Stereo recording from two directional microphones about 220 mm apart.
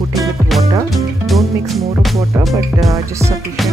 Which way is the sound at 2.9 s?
15° right (ahead or behind).